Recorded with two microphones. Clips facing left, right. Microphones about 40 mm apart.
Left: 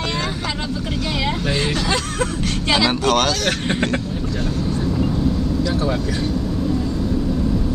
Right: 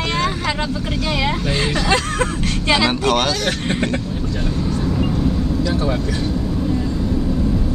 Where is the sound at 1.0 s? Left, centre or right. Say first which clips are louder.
Right 2 dB; centre.